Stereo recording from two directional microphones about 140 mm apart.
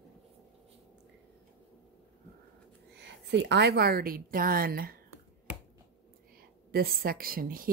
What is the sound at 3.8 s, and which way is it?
A woman's voice, 90° right.